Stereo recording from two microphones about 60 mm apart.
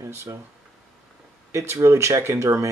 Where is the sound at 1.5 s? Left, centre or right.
Right.